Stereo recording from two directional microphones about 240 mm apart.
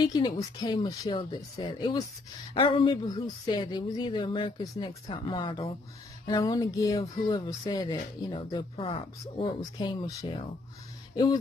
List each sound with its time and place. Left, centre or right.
0.0 s speech: centre